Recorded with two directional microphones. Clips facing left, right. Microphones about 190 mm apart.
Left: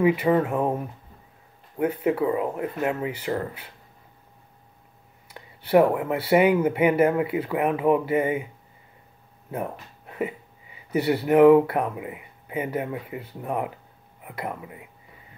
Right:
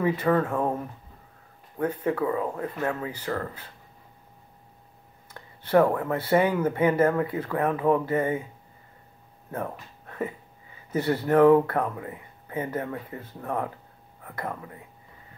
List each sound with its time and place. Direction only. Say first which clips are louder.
0.2 s speech: left 2 dB; 15° left (ahead or behind)
1.8 s speech: left 3 dB; 15° left (ahead or behind)
5.3 s speech: left 2 dB; 15° left (ahead or behind)
9.5 s speech: left 2 dB; 15° left (ahead or behind)